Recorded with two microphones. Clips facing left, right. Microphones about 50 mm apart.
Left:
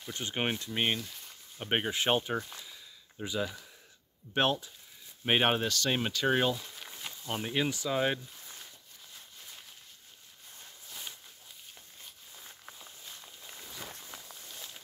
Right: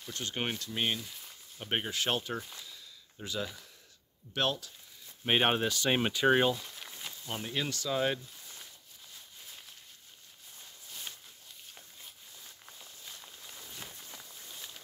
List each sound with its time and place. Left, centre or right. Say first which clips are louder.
0.0 s speech: left 2 dB; centre
1.0 s speech: even; centre
1.6 s speech: left 3 dB; centre
2.5 s a sound: left 1 dB; centre
4.3 s speech: left 3 dB; left
5.2 s speech: even; centre
5.7 s speech: right 1 dB; centre
6.5 s speech: even; centre